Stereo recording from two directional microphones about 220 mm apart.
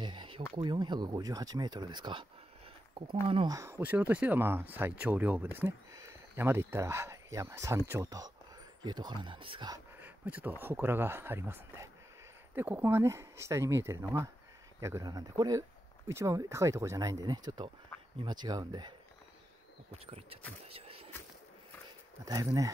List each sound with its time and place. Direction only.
0.0 s speech: 20° right (ahead or behind)
3.5 s speech: 10° right (ahead or behind)
9.9 s a sound: 10° right (ahead or behind)
10.6 s speech: 10° right (ahead or behind); by 20.3 s 25° right (ahead or behind)
20.6 s a sound: 25° right (ahead or behind)
22.2 s speech: 15° right (ahead or behind)